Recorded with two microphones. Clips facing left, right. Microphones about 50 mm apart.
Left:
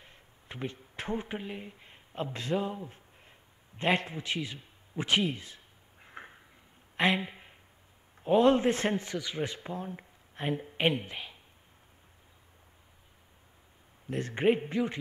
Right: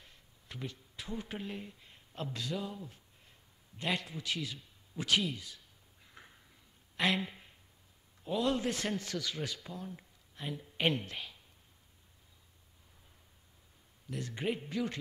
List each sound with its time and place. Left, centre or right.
0.0 s a sound: left
0.9 s speech: left
1.2 s speech: left
6.0 s a sound: left
7.0 s speech: left
8.2 s a man's voice: left
10.8 s speech: centre
14.0 s a man's voice: left